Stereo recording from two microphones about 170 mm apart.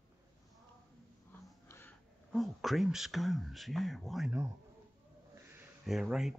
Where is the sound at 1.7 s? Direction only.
15° left (ahead or behind).